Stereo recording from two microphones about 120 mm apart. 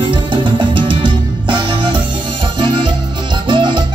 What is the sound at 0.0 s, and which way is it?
Music, 45° right (ahead or behind).